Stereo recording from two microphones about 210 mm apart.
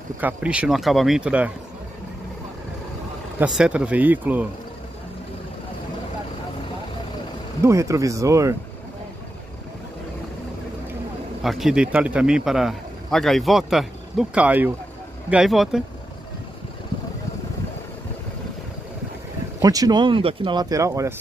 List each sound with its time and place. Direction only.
0.2 s speech: 5° right (ahead or behind)
3.3 s speech: 5° right (ahead or behind)
7.6 s speech: 15° right (ahead or behind)
11.4 s speech: centre (ahead or behind)
19.6 s speech: 15° right (ahead or behind)